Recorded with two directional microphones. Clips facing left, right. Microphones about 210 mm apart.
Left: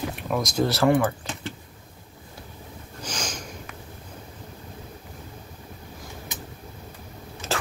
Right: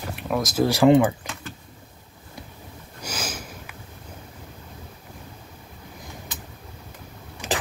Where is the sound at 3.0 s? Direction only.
5° right (ahead or behind).